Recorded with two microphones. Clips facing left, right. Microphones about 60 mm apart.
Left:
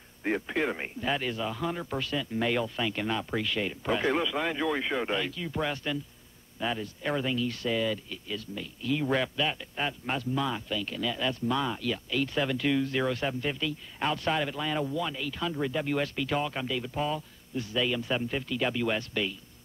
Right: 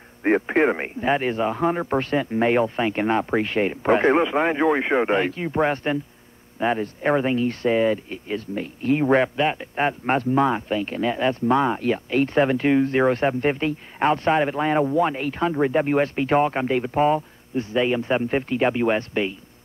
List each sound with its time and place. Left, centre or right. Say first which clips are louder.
0.2 s speech: right 10 dB; right